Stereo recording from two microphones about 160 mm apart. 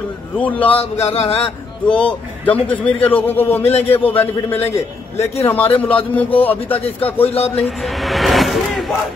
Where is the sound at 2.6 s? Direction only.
10° left (ahead or behind).